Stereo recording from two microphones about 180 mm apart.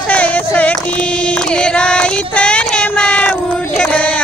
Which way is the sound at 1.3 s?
5° left (ahead or behind).